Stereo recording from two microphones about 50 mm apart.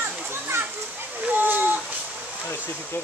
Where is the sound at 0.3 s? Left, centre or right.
Right.